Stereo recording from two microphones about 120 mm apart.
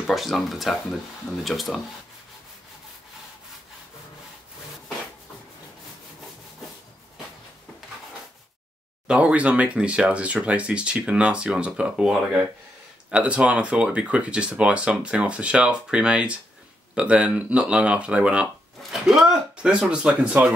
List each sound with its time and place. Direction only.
0.0 s speech: centre (ahead or behind)
9.0 s speech: 10° right (ahead or behind)